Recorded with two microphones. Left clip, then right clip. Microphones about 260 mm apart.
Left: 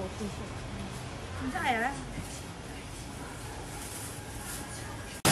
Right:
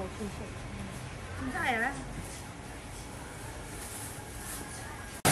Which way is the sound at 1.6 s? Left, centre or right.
Centre.